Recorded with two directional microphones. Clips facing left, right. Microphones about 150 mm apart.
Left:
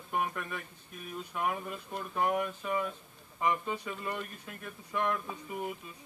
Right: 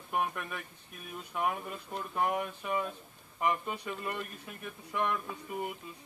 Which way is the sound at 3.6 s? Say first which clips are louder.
Left 1 dB; 15° right (ahead or behind).